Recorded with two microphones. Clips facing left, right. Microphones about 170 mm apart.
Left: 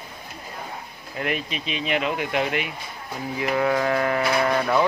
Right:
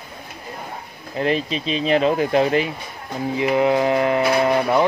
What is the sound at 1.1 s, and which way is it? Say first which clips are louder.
Speech: right 7 dB; 30° right (ahead or behind).